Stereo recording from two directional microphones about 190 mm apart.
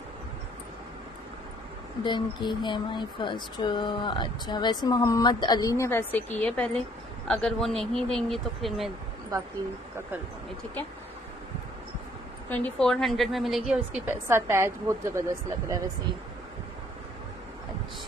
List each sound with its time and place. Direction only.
2.0 s a woman's voice: 25° left (ahead or behind); by 8.9 s centre (ahead or behind)
9.3 s speech: 20° right (ahead or behind)
12.4 s a woman's voice: 5° left (ahead or behind); by 15.2 s 15° right (ahead or behind)